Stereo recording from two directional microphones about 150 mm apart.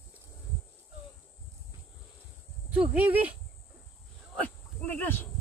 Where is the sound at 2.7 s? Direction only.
10° right (ahead or behind).